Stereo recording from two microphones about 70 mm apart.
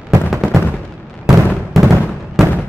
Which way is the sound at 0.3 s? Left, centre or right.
Centre.